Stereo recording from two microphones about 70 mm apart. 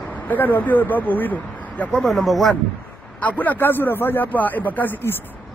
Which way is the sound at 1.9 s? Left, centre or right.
Centre.